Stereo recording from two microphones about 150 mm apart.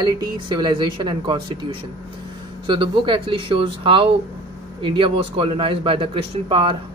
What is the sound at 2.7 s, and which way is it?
Speech, 30° right (ahead or behind).